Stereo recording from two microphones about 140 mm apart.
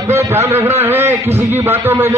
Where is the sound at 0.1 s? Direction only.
20° right (ahead or behind).